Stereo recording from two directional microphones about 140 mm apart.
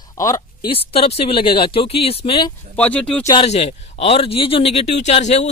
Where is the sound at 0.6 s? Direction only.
45° left (ahead or behind).